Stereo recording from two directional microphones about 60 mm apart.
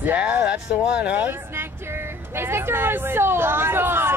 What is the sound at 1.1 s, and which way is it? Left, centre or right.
Speech, right.